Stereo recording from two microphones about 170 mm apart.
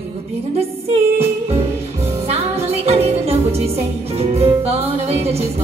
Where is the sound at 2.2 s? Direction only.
35° right (ahead or behind).